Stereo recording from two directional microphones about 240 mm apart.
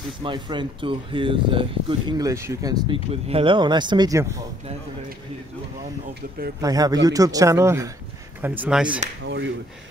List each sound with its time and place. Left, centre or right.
0.2 s speech: centre
6.6 s speech: centre
9.2 s speech: right